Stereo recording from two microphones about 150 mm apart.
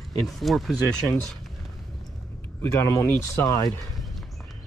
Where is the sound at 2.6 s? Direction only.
15° left (ahead or behind).